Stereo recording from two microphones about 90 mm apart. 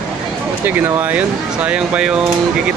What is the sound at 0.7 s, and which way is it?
Speech, 25° right (ahead or behind).